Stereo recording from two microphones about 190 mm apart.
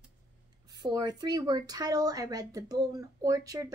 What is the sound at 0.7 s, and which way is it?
Speech, 20° right (ahead or behind).